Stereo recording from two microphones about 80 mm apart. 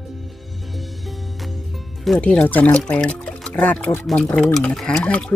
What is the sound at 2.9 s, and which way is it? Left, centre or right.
Water, centre.